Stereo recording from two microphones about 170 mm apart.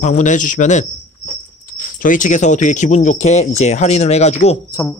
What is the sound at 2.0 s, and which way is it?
Speech, 50° left (ahead or behind).